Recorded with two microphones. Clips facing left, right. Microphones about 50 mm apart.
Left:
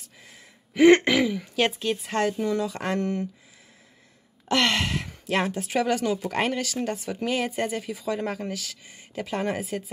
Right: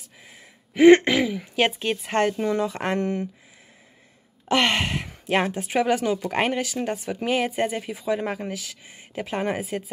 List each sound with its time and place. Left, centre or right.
0.2 s a woman's voice: centre
4.5 s speech: right